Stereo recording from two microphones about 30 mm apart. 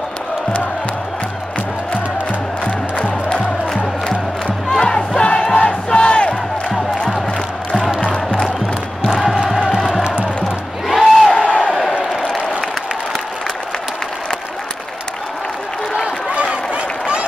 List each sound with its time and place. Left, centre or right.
2.6 s music: left
4.7 s battle cry: left
5.9 s crowd: left
9.1 s music: centre
11.3 s crowd: left
16.3 s a sound: right